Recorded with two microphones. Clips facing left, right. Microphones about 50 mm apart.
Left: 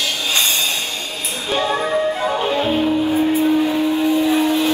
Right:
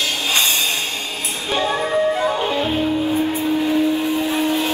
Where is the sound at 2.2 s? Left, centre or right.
Left.